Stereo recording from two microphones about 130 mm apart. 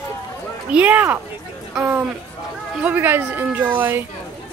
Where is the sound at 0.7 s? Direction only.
10° right (ahead or behind).